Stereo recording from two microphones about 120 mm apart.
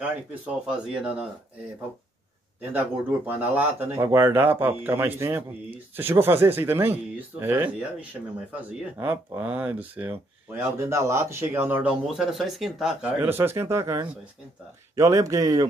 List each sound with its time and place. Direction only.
0.0 s speech: 10° right (ahead or behind)
2.7 s speech: 15° right (ahead or behind)
12.1 s speech: 5° right (ahead or behind)
13.2 s speech: 20° right (ahead or behind)